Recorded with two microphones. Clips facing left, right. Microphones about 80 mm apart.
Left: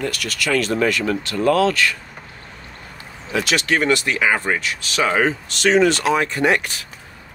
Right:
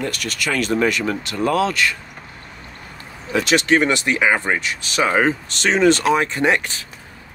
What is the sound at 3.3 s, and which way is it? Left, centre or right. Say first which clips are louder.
Speech: right 3 dB; right.